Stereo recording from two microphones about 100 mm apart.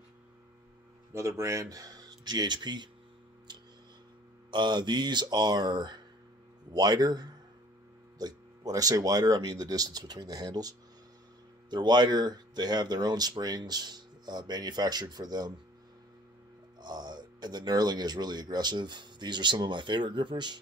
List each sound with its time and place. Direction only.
1.1 s speech: 30° right (ahead or behind); by 2.9 s 50° right (ahead or behind)
3.5 s a sound: 45° right (ahead or behind)
4.5 s speech: 50° right (ahead or behind)
16.8 s speech: 45° right (ahead or behind)